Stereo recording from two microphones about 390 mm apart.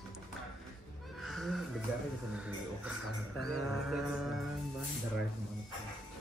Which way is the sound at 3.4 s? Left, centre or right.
Centre.